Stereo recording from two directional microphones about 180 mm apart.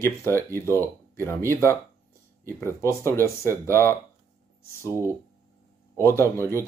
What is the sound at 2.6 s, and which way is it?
Speech, 15° left (ahead or behind).